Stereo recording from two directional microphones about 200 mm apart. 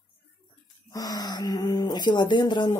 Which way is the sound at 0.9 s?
20° left (ahead or behind).